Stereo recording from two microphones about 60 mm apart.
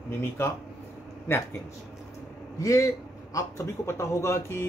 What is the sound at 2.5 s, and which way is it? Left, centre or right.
A man's voice, left.